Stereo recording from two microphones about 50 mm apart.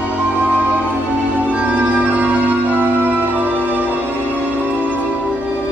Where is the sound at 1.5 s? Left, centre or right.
Right.